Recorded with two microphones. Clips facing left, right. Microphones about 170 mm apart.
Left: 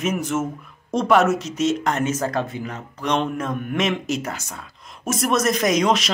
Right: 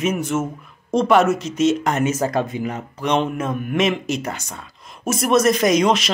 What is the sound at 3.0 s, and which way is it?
A man's voice, 5° right (ahead or behind).